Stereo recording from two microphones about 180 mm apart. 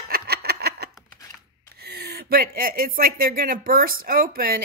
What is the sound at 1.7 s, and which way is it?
Speech, 60° right (ahead or behind).